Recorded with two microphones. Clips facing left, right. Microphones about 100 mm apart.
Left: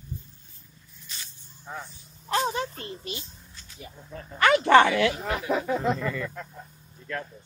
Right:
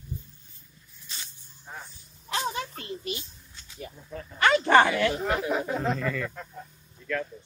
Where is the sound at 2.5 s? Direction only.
35° left (ahead or behind).